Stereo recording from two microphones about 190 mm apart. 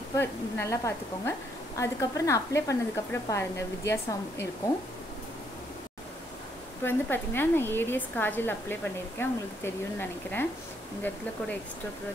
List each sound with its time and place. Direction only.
0.2 s speech: 15° left (ahead or behind)
6.8 s speech: 10° left (ahead or behind)